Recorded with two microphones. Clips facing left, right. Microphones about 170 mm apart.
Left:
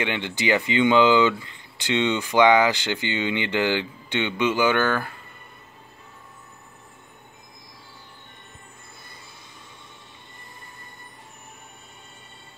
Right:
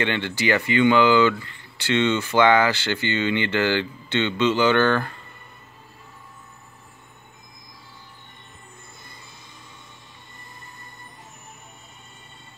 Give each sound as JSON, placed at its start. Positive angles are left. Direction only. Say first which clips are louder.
{"t": 0.0, "sound": "speech", "louder": "right 2 dB", "side_deg": 15}